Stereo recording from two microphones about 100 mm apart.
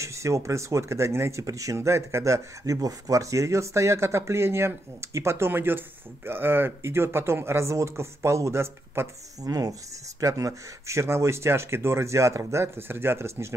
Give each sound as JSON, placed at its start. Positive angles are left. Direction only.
{"t": 0.0, "sound": "speech", "side_deg": -30}
{"t": 9.4, "sound": "speech", "side_deg": -35}